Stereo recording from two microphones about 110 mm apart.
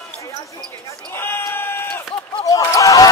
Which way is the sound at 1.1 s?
20° left (ahead or behind).